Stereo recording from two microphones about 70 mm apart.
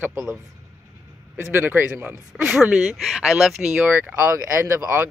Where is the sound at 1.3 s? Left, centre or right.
Right.